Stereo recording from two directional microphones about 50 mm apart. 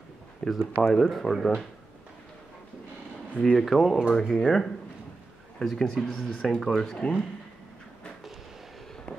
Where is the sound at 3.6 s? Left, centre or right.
Centre.